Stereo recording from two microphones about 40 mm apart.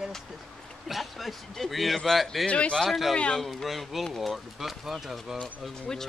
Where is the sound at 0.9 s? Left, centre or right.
Centre.